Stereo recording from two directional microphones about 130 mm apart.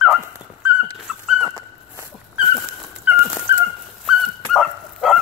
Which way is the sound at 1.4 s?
25° right (ahead or behind).